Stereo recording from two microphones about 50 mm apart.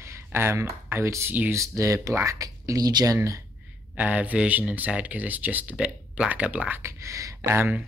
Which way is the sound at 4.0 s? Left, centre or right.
Right.